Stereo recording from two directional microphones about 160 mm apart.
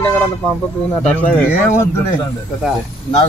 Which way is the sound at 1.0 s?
10° left (ahead or behind).